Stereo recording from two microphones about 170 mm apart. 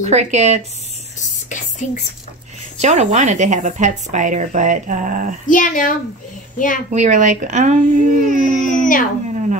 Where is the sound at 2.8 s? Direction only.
40° right (ahead or behind).